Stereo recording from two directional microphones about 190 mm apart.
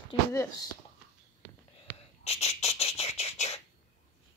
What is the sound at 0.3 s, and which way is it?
Speech, 15° left (ahead or behind).